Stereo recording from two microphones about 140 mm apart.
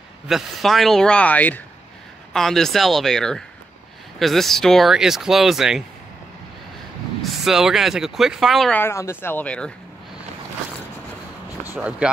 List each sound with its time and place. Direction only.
0.3 s speech: centre (ahead or behind)
7.2 s speech: centre (ahead or behind)
8.7 s speech: 20° left (ahead or behind)
11.7 s speech: 10° right (ahead or behind)